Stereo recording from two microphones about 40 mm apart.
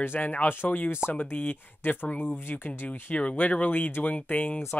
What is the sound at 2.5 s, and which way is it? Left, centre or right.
Speech, left.